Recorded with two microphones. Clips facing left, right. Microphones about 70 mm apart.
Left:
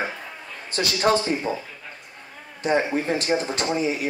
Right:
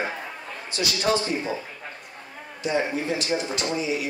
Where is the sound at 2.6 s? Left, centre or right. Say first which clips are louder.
Left 3 dB; left.